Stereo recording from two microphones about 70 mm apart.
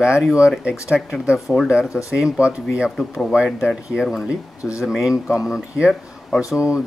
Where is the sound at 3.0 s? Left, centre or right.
Centre.